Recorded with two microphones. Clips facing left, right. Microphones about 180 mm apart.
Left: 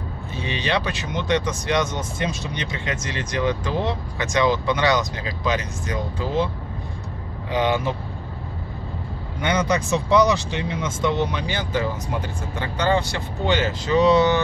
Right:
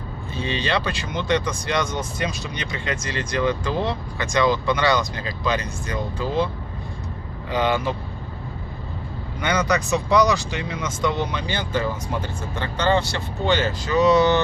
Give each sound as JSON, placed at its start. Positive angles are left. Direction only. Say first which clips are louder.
{"t": 0.4, "sound": "speech", "louder": "even", "side_deg": 15}
{"t": 7.5, "sound": "speech", "louder": "even", "side_deg": 20}
{"t": 9.4, "sound": "speech", "louder": "even", "side_deg": 25}